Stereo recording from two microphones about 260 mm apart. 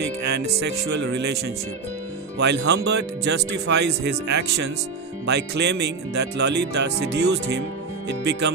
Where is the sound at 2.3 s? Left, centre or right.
Right.